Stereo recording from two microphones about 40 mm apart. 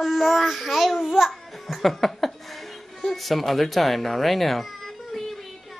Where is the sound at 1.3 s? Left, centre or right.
Centre.